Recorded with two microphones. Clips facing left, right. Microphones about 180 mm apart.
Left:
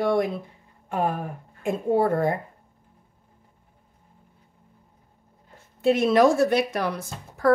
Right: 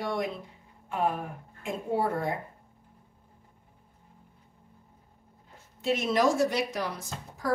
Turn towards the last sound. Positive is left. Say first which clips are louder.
# left 10 dB
turn(degrees=60)  # may be behind; listen again after turning